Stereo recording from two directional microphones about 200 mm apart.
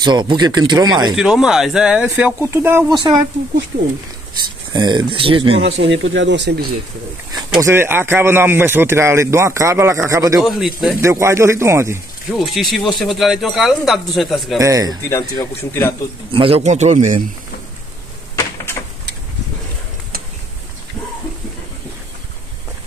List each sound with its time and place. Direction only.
0.0 s speech: 20° right (ahead or behind)
1.1 s speech: 5° right (ahead or behind)
4.7 s speech: 20° right (ahead or behind)
5.6 s speech: 65° right (ahead or behind)
7.3 s speech: 15° right (ahead or behind)
10.4 s speech: centre (ahead or behind)
11.0 s speech: 15° right (ahead or behind)
12.3 s speech: centre (ahead or behind)
14.6 s speech: 15° right (ahead or behind)
15.0 s speech: 15° left (ahead or behind)
16.3 s speech: 30° right (ahead or behind)
18.3 s a sound: 15° left (ahead or behind)